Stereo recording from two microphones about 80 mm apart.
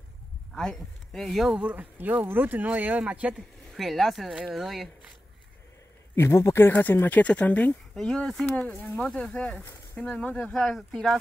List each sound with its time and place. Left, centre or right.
0.5 s speech: centre
1.5 s speech: centre
3.7 s speech: centre
6.1 s speech: left
7.9 s speech: centre
8.5 s speech: left
8.9 s speech: centre